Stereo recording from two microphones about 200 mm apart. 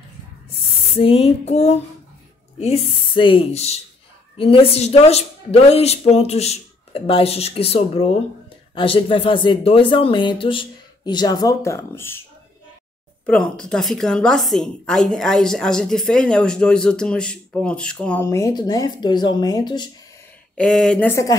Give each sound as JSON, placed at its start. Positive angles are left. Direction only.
{"t": 0.9, "sound": "a woman's voice", "side_deg": 30}
{"t": 20.5, "sound": "a woman's voice", "side_deg": 5}